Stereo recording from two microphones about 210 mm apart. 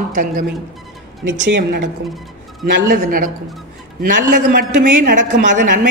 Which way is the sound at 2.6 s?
45° right (ahead or behind).